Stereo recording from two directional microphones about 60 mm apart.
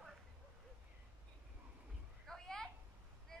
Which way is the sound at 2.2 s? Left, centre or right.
Centre.